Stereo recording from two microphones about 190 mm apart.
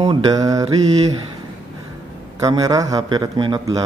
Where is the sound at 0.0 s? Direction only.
20° right (ahead or behind).